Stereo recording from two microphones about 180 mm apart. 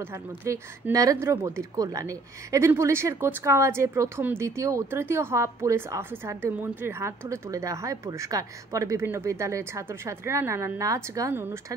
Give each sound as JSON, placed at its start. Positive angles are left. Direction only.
{"t": 0.0, "sound": "speech", "side_deg": -15}